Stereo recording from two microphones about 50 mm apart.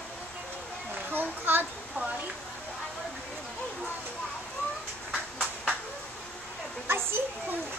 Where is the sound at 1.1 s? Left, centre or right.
Right.